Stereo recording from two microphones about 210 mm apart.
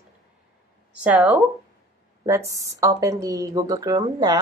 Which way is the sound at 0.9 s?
5° right (ahead or behind).